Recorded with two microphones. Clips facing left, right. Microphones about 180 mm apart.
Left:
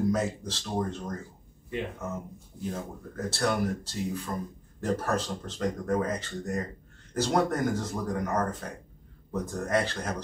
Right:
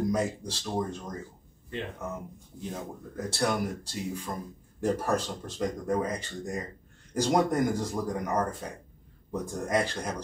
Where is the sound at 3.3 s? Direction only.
15° right (ahead or behind).